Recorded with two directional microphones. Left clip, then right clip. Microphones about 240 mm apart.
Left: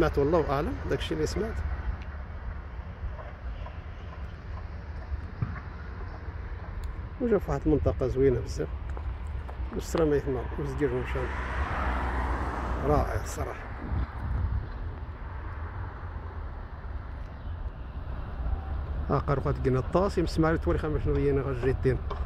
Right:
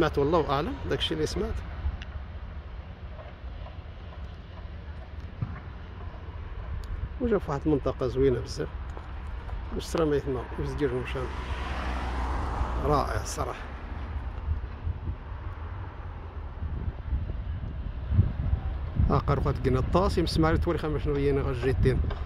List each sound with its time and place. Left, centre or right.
0.1 s speech: centre
7.2 s speech: centre
7.6 s speech: centre
10.3 s speech: centre
11.0 s vehicle: centre; by 12.8 s left
12.8 s speech: centre
19.0 s speech: centre